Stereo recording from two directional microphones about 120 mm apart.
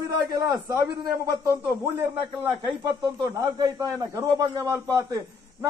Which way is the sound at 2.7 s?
30° right (ahead or behind).